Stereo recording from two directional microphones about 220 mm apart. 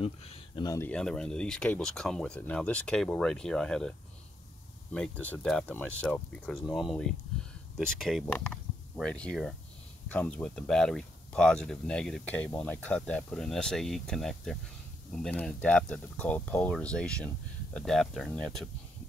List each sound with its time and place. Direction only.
0.0 s speech: 25° left (ahead or behind)
0.7 s speech: 10° left (ahead or behind)
4.9 s speech: 5° left (ahead or behind)